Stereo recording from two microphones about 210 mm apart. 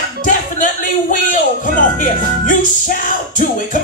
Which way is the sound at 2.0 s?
40° left (ahead or behind).